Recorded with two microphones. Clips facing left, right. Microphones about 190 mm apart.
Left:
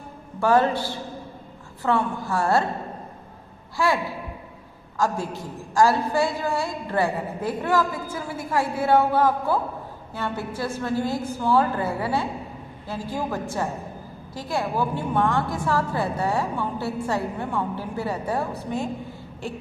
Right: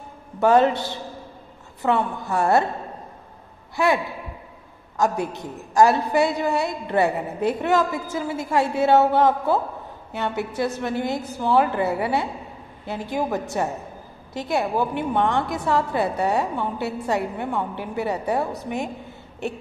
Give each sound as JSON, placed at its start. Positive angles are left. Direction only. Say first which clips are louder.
{"t": 0.4, "sound": "a woman's voice", "louder": "right 3 dB", "side_deg": -20}
{"t": 3.7, "sound": "a man's voice", "louder": "right 2 dB", "side_deg": -20}